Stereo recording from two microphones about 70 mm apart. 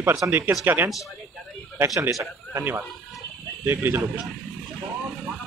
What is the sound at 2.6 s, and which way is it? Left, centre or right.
Speech, right.